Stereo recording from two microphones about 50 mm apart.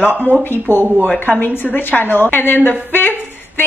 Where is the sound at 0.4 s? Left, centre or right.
Left.